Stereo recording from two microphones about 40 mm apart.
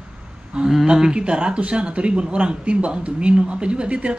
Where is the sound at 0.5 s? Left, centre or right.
Right.